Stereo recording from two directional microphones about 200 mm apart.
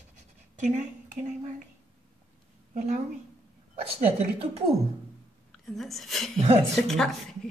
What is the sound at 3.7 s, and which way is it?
Speech, 30° right (ahead or behind).